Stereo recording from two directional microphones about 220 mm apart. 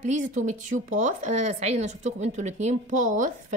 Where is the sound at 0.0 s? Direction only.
35° right (ahead or behind).